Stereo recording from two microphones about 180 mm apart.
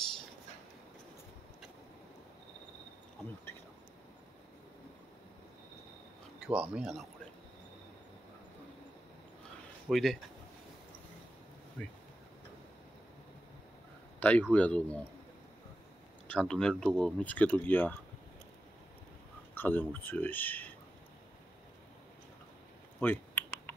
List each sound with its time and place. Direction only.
6.4 s speech: 5° right (ahead or behind)
9.8 s speech: centre (ahead or behind)
11.8 s speech: 5° left (ahead or behind)
14.2 s speech: 10° left (ahead or behind)
16.3 s speech: 5° left (ahead or behind)
19.5 s speech: 10° left (ahead or behind)
22.9 s clicking: 10° left (ahead or behind)